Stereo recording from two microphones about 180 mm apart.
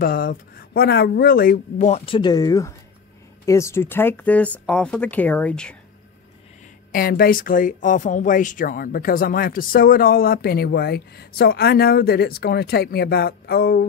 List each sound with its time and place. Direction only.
0.0 s speech: 50° left (ahead or behind)
1.9 s speech: 35° left (ahead or behind); by 5.8 s 5° left (ahead or behind)
6.9 s speech: 55° left (ahead or behind)